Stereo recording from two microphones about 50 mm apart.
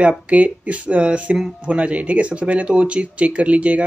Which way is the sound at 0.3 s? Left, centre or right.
Right.